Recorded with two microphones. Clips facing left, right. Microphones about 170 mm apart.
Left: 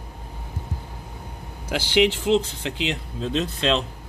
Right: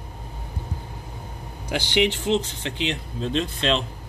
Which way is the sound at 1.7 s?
5° left (ahead or behind).